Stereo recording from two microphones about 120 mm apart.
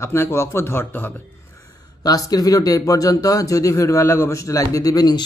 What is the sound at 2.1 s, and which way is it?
Speech, 30° left (ahead or behind).